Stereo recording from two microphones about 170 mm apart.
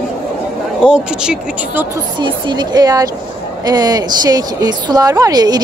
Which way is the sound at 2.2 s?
25° right (ahead or behind).